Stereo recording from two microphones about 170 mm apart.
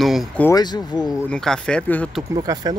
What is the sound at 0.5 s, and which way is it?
Speech, 25° left (ahead or behind).